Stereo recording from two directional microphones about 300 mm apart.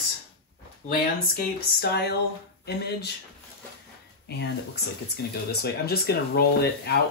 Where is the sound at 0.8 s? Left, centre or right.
Left.